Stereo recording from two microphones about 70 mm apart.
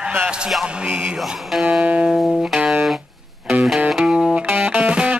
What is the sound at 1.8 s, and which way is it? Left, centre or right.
Music, centre.